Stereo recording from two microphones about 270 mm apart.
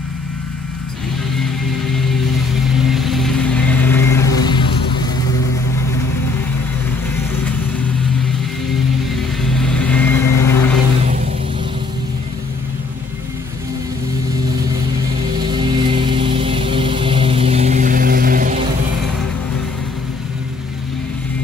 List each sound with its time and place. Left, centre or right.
1.3 s music: centre
2.9 s vehicle: centre
9.4 s vehicle: centre
15.5 s music: centre